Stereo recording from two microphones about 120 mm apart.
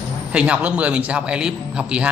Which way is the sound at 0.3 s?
10° right (ahead or behind).